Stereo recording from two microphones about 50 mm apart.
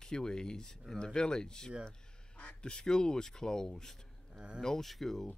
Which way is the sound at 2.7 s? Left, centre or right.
Centre.